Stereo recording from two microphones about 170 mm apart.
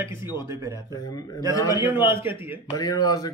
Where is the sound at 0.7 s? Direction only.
20° left (ahead or behind).